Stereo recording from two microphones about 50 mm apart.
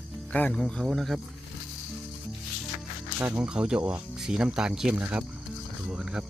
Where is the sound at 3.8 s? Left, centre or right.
Right.